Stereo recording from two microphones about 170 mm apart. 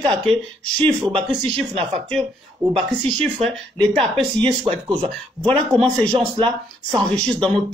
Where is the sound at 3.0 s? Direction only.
40° right (ahead or behind).